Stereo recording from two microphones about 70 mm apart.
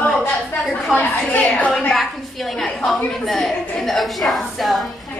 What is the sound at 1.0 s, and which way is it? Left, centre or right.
Speech, left.